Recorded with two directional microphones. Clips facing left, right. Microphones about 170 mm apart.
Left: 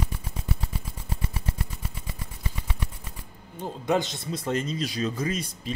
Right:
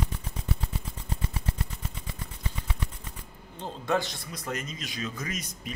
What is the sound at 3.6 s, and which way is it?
Speech, 20° left (ahead or behind).